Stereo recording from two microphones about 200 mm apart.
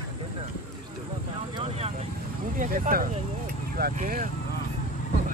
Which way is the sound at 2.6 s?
40° right (ahead or behind).